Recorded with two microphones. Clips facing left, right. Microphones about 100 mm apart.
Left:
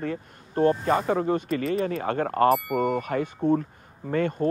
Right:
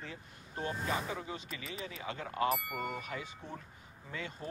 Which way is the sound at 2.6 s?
Centre (ahead or behind).